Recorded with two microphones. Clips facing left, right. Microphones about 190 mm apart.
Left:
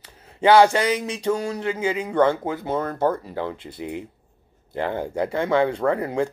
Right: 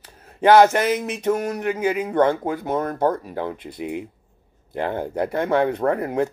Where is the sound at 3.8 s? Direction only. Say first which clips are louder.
Right 3 dB; 55° right (ahead or behind).